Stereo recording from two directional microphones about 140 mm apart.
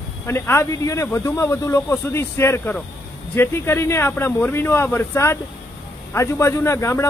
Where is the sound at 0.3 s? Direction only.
20° left (ahead or behind).